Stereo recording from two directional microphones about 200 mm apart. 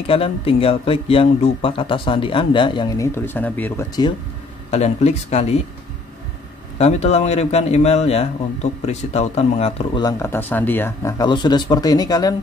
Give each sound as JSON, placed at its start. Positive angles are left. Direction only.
{"t": 0.0, "sound": "speech", "side_deg": 25}
{"t": 4.6, "sound": "a man's voice", "side_deg": 30}
{"t": 6.8, "sound": "a man's voice", "side_deg": 30}
{"t": 10.0, "sound": "speech", "side_deg": 15}